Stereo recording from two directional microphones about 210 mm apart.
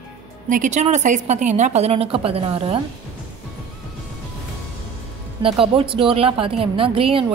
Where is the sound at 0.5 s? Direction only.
35° right (ahead or behind).